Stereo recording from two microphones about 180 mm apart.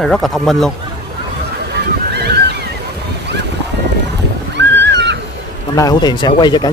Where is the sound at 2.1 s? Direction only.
65° right (ahead or behind).